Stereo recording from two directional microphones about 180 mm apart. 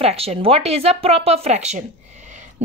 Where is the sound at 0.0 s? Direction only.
35° right (ahead or behind).